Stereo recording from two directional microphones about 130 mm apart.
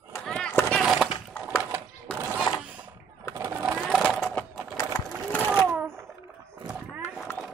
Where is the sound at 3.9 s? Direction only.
5° right (ahead or behind).